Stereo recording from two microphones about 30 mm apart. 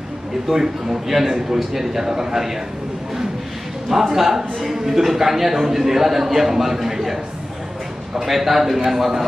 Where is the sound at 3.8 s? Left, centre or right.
Centre.